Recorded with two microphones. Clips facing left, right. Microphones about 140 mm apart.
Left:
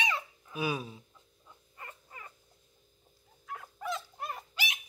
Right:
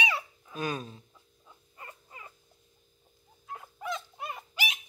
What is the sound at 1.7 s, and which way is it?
Frog, 20° right (ahead or behind).